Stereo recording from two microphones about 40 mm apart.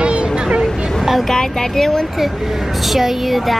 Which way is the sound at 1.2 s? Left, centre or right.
Centre.